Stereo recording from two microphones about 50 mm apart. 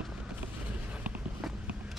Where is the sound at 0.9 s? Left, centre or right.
Right.